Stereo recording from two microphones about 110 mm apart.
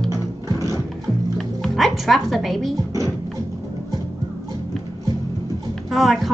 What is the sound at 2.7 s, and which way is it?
Music, 30° right (ahead or behind).